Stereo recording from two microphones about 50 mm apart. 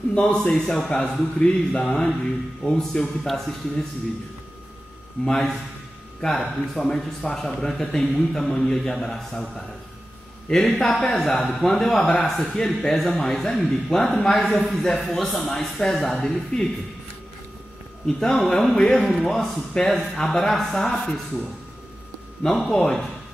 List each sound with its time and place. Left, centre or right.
0.1 s a man's voice: centre
5.2 s speech: centre
10.5 s speech: centre
18.0 s speech: centre
22.6 s speech: centre